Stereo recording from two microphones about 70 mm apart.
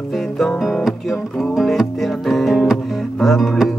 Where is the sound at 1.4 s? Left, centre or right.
Centre.